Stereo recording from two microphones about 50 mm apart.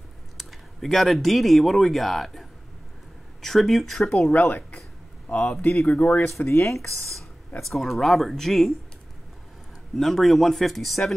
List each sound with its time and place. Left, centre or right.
0.4 s speech: centre
3.4 s speech: centre
4.3 s speech: left
6.5 s speech: left
7.6 s speech: centre
9.9 s speech: centre